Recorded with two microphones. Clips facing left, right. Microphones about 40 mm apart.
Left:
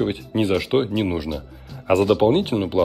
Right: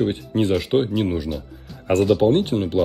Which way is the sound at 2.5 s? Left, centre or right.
Left.